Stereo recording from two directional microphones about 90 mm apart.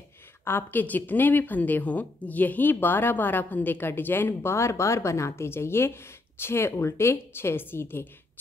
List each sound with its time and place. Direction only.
0.5 s a woman's voice: 25° left (ahead or behind)